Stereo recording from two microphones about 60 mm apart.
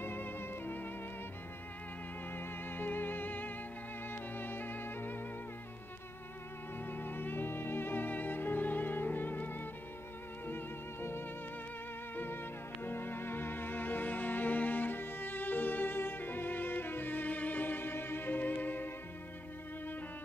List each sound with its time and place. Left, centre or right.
0.0 s music: left
2.3 s music: left
6.9 s music: left
12.8 s music: left